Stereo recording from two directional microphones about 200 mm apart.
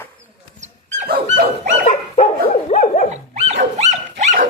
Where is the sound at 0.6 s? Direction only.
35° right (ahead or behind).